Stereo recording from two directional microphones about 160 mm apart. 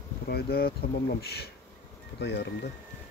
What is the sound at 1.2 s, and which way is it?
Speech, 90° left.